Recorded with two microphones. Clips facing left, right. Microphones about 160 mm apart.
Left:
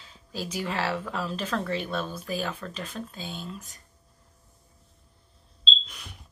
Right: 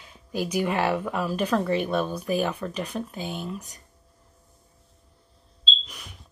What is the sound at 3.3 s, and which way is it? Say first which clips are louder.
Speech: right 5 dB; 60° right (ahead or behind).